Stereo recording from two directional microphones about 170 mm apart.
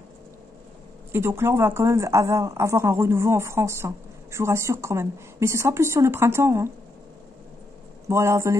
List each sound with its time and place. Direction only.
1.1 s speech: 15° right (ahead or behind)
8.1 s speech: 15° right (ahead or behind)